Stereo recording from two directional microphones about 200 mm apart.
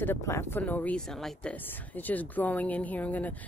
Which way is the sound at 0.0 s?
10° left (ahead or behind).